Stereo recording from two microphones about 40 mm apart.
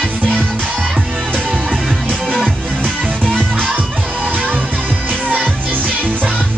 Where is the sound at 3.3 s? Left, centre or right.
Right.